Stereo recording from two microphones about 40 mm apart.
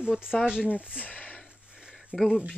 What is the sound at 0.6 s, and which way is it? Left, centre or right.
Speech, right.